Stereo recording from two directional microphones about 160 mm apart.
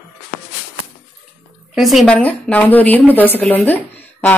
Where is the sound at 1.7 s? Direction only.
Centre (ahead or behind).